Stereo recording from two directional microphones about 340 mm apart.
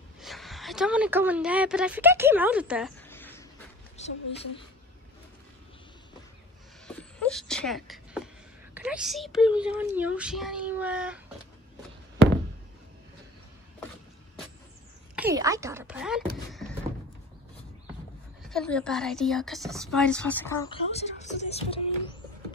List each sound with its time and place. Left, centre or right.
0.2 s a woman's voice: centre
4.0 s a woman's voice: centre
6.9 s a sound: centre
8.7 s speech: centre
15.1 s speech: centre
18.5 s speech: centre